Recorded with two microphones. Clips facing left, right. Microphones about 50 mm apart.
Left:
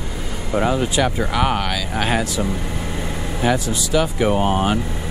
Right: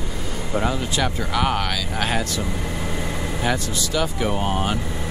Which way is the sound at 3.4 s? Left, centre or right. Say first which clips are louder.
Left 5 dB; centre.